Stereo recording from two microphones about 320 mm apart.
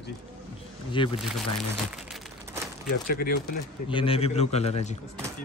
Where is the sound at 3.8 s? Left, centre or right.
Centre.